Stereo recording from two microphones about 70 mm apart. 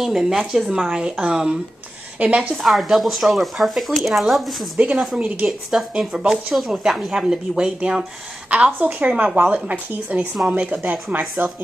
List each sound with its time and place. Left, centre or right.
0.0 s a woman's voice: centre; by 2.5 s right
2.5 s a woman's voice: centre; by 11.6 s right